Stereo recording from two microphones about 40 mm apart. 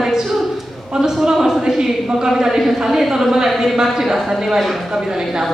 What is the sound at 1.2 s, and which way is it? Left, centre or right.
A woman's voice, centre.